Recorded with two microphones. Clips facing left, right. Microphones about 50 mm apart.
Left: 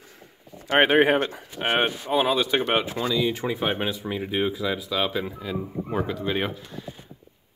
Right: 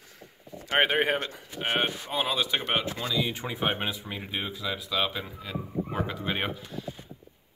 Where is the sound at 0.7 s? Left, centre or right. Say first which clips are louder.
Left 6 dB; left.